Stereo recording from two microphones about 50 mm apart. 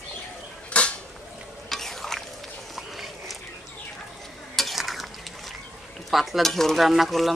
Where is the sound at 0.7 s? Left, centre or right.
Left.